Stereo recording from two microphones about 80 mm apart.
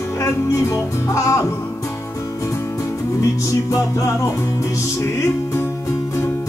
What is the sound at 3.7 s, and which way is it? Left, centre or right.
Music, left.